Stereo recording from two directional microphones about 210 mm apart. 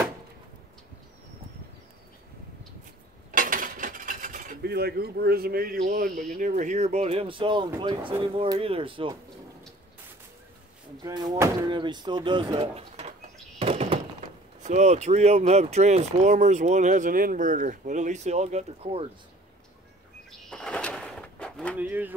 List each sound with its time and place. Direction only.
3.3 s dishes: 40° right (ahead or behind)
6.3 s speech: 35° right (ahead or behind)
11.0 s speech: 20° right (ahead or behind)
13.6 s thunk: 30° right (ahead or behind)
14.6 s speech: 35° right (ahead or behind)
20.2 s a sound: centre (ahead or behind)
21.8 s speech: 10° right (ahead or behind)